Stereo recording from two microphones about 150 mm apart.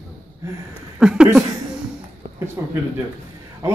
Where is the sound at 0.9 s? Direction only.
5° right (ahead or behind).